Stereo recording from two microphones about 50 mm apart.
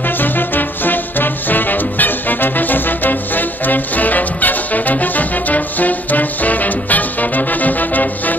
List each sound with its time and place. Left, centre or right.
0.2 s music: left